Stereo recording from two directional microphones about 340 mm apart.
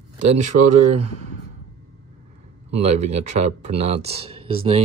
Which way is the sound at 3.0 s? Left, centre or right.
Centre.